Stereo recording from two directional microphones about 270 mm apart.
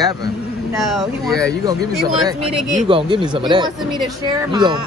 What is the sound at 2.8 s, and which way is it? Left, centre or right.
Speech, centre.